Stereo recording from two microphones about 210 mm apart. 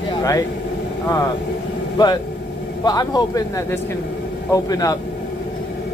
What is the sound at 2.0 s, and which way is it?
Speech, 20° left (ahead or behind).